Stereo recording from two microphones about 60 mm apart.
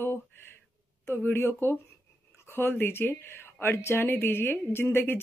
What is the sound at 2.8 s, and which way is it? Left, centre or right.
Speech, left.